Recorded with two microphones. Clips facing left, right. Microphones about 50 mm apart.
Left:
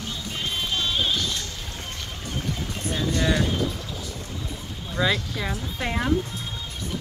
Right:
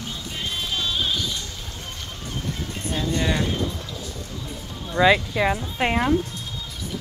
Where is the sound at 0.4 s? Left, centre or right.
Centre.